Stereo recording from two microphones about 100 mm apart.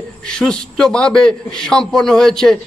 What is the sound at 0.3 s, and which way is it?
A man's voice, 5° left (ahead or behind).